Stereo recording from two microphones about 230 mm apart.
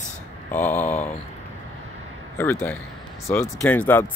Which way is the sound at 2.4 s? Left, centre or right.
Centre.